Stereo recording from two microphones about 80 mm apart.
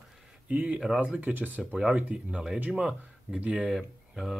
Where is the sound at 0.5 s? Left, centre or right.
Centre.